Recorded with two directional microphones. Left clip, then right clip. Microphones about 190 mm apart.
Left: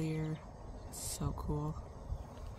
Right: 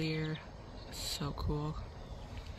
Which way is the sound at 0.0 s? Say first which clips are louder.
Right 3 dB; 10° left (ahead or behind).